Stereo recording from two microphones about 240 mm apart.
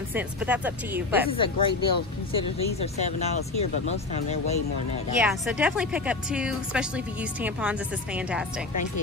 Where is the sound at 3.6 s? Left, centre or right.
Left.